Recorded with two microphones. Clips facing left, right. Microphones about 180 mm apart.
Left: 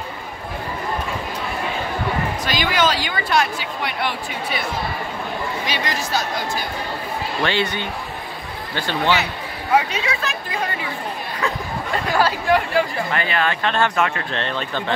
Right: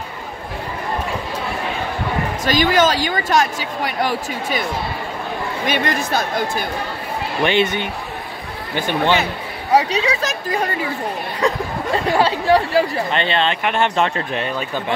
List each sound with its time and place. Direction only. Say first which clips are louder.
2.4 s a woman's voice: right 6 dB; 45° right (ahead or behind)
5.7 s speech: right 7 dB; 55° right (ahead or behind)
7.4 s speech: right 6 dB; 20° right (ahead or behind)
9.1 s speech: right 3 dB; 45° right (ahead or behind)
11.4 s speech: right 6 dB; 30° right (ahead or behind)
14.3 s speech: right 2 dB; 10° right (ahead or behind)